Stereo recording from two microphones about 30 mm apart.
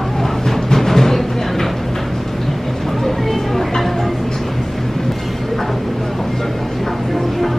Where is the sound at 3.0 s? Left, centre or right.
Centre.